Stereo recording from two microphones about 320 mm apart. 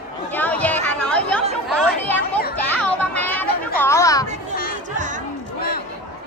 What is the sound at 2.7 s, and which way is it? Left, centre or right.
Children playing, centre.